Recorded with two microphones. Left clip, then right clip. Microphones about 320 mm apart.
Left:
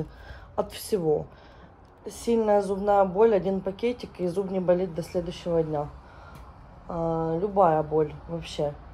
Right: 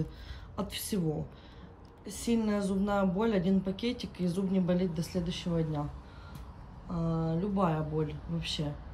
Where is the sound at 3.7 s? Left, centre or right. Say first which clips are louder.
Left 7 dB; centre.